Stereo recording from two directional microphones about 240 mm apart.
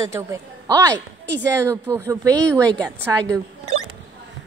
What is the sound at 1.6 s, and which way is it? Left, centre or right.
A woman's voice, centre.